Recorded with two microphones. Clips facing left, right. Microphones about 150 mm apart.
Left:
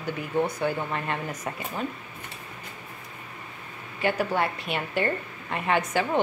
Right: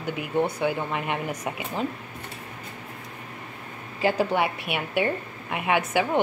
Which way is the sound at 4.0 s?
25° right (ahead or behind).